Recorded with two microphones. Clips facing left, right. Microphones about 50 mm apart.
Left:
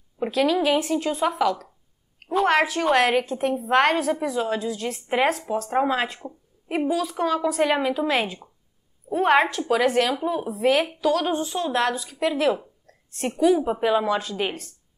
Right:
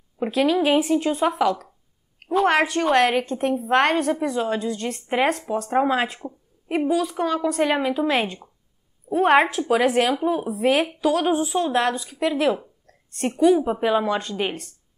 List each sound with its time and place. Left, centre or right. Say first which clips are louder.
0.2 s a woman's voice: right 1 dB; centre
12.8 s a sound: right 5 dB; centre
13.4 s a woman's voice: right 2 dB; centre